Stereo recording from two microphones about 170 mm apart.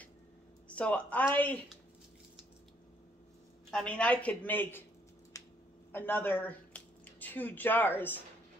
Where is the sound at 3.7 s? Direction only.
5° left (ahead or behind).